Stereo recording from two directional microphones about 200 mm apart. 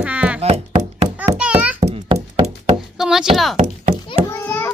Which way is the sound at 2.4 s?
55° right (ahead or behind).